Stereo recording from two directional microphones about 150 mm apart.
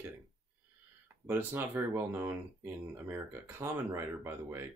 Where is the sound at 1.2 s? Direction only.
15° right (ahead or behind).